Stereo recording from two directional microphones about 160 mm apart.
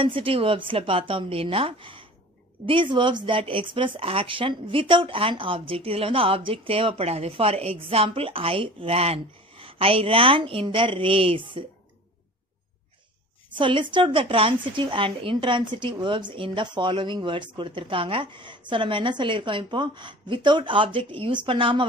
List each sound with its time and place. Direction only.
0.0 s a woman's voice: 35° right (ahead or behind)
13.6 s a woman's voice: 30° right (ahead or behind)